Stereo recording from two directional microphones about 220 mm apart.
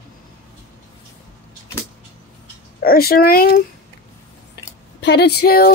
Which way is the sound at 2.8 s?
45° left (ahead or behind).